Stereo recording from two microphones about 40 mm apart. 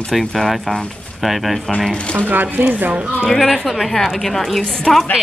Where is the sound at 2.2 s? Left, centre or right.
Right.